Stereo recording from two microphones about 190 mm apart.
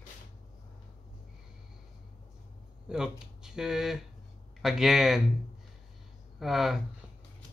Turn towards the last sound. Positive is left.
turn(degrees=0)  # may be behind; listen again after turning